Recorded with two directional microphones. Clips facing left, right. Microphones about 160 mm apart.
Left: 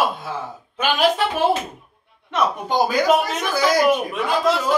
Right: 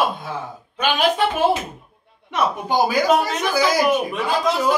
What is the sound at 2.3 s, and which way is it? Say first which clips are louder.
A man's voice: even; 10° right (ahead or behind).